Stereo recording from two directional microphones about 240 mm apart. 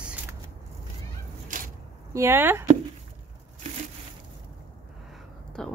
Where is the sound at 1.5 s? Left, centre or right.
Right.